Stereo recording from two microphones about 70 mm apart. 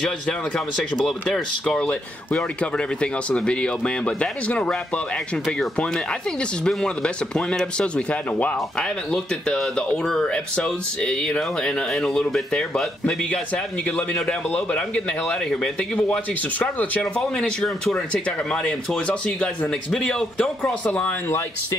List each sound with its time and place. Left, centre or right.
0.0 s speech: centre
6.7 s speech: centre
16.5 s speech: left